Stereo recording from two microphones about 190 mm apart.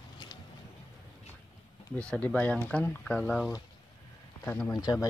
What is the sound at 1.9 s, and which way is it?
Speech, 5° left (ahead or behind).